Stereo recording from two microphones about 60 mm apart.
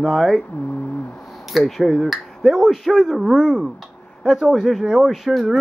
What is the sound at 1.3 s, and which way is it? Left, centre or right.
A man's voice, centre.